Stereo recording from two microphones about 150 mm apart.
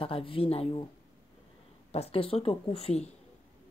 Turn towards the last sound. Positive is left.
turn(degrees=40)  # may be behind; listen again after turning